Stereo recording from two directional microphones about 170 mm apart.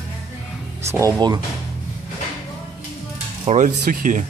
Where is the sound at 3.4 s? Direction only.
45° right (ahead or behind).